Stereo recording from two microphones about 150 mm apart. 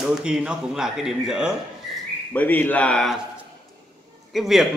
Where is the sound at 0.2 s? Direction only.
5° right (ahead or behind).